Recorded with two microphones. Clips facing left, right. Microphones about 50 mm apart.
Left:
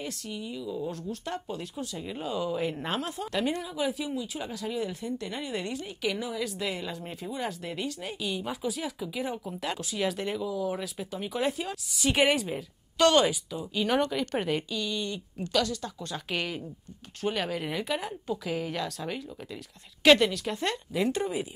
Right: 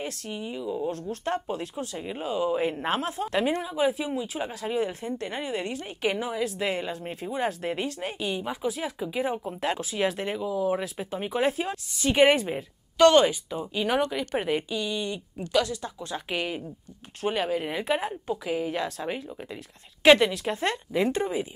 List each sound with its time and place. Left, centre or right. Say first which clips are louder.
0.0 s a woman's voice: right 3 dB; right
0.9 s a woman's voice: right 5 dB; right
8.4 s speech: right 3 dB; centre
8.8 s speech: right 4 dB; right
12.0 s speech: right 5 dB; centre
12.4 s speech: right 3 dB; right
12.9 s a woman's voice: right 4 dB; centre; by 20.8 s right
20.9 s speech: right 2 dB; centre